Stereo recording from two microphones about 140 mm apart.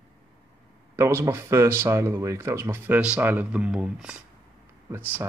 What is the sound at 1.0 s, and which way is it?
Speech, 20° right (ahead or behind).